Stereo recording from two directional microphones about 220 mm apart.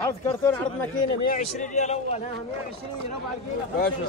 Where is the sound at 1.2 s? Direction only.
35° left (ahead or behind).